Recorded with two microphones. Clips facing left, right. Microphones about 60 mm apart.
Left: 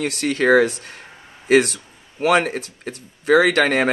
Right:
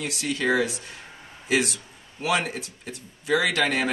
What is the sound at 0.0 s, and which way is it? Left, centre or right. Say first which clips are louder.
Speech: left 7 dB; left.